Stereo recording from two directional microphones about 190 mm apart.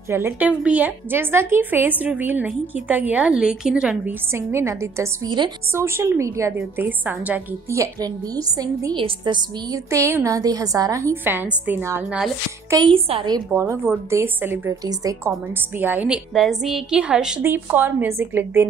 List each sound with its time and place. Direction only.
0.1 s a woman's voice: 10° right (ahead or behind); by 13.4 s 25° right (ahead or behind)
13.5 s a woman's voice: 15° right (ahead or behind)